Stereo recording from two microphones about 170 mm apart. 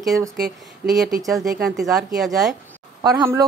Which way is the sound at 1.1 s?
20° right (ahead or behind).